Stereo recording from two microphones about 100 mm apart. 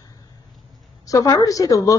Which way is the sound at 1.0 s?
35° left (ahead or behind).